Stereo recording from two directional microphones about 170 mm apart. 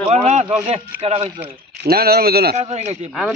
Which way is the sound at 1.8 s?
65° right (ahead or behind).